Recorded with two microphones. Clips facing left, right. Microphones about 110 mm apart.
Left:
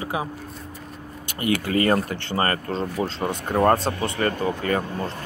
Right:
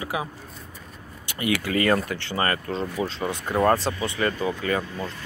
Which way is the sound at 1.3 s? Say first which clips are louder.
Left 2 dB; 40° left (ahead or behind).